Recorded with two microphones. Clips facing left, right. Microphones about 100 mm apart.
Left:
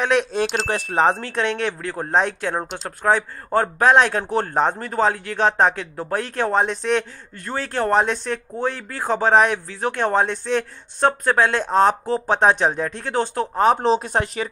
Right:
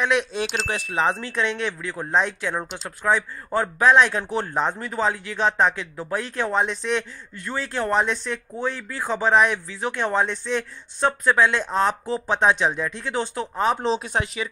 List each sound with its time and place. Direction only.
0.0 s a man's voice: 45° left (ahead or behind)